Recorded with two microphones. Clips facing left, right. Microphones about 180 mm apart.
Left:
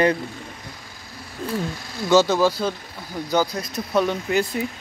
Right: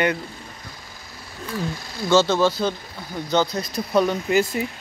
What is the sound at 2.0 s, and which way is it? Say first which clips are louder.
Speech: left 1 dB; 10° left (ahead or behind).